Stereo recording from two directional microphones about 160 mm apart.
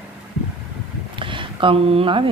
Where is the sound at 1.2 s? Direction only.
30° right (ahead or behind).